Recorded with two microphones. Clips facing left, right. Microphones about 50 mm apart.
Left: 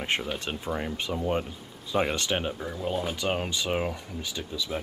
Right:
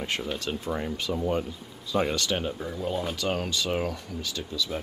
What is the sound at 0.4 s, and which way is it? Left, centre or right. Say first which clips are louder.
Speech: right 1 dB; left.